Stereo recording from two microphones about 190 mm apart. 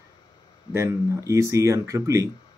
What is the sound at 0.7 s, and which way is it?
Speech, 15° right (ahead or behind).